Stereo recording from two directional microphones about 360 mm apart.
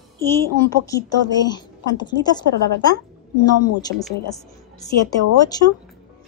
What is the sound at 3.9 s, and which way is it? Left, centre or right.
Speech, right.